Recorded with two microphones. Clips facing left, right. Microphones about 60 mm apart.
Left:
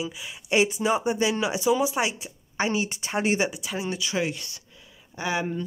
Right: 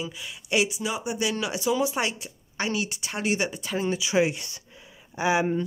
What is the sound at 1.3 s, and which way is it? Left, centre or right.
Speech, centre.